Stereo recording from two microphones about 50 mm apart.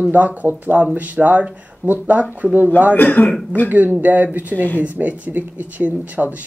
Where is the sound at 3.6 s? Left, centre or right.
Right.